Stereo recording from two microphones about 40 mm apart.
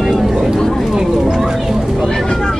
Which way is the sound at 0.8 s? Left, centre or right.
Centre.